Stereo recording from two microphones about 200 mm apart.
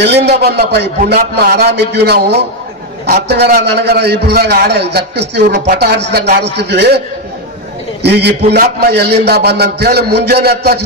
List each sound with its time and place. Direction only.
0.0 s a man's voice: 55° right (ahead or behind)
8.0 s a man's voice: 55° right (ahead or behind)